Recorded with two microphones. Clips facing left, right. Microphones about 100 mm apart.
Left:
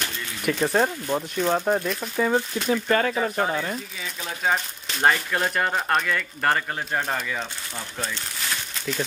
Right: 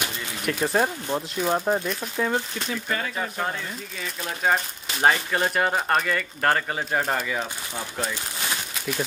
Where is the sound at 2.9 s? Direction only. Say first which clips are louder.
Left 8 dB; 55° left (ahead or behind).